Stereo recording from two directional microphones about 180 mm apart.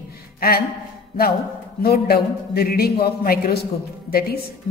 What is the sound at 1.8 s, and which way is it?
A woman's voice, 60° left (ahead or behind).